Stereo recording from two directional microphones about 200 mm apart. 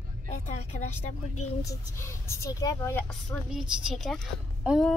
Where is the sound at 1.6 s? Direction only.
15° left (ahead or behind).